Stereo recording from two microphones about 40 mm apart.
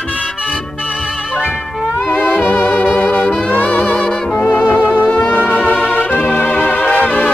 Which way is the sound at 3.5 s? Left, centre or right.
Left.